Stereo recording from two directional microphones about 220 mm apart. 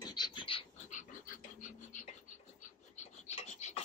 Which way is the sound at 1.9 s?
35° left (ahead or behind).